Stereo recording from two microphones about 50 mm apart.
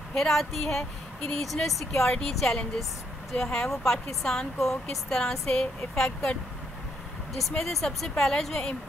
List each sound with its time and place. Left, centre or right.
0.1 s a woman's voice: centre
7.5 s a woman's voice: centre